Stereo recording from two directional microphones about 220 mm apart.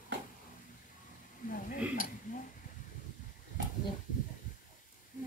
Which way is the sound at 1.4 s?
40° left (ahead or behind).